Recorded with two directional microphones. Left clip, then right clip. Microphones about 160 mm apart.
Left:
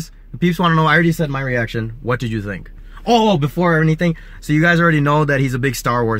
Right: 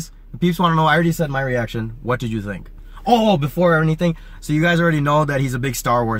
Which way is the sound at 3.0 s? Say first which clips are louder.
Left 1 dB; 5° left (ahead or behind).